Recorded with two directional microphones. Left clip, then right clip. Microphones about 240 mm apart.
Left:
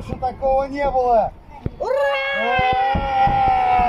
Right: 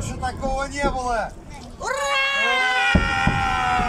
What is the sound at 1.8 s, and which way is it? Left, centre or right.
Cat, left.